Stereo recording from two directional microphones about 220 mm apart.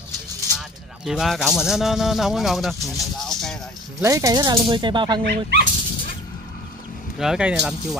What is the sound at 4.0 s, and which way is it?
Speech, 15° right (ahead or behind).